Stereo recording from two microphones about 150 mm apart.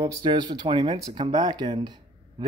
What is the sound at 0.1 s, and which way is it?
Speech, 30° right (ahead or behind).